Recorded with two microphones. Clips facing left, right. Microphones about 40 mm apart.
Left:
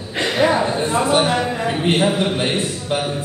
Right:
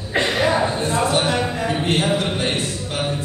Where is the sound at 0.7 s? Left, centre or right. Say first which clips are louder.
Left 3 dB; centre.